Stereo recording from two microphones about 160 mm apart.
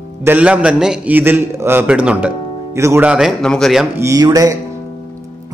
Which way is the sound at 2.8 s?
15° right (ahead or behind).